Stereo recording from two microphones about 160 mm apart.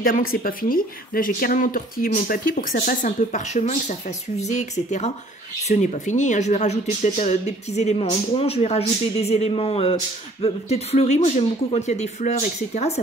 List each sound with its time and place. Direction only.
0.0 s speech: 65° left (ahead or behind); by 13.0 s 45° left (ahead or behind)